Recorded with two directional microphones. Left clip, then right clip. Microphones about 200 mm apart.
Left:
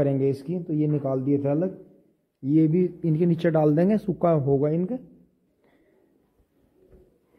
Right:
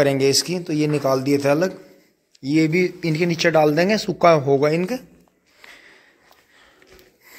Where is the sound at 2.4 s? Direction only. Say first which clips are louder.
Right 3 dB; 10° left (ahead or behind).